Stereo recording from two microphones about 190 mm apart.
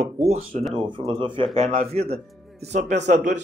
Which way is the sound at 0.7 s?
25° right (ahead or behind).